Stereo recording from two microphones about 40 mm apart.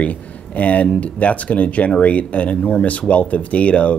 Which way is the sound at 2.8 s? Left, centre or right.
Left.